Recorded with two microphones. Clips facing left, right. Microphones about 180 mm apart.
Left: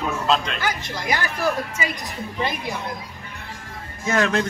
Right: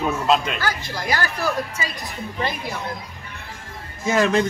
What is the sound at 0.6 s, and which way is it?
Speech, 20° left (ahead or behind).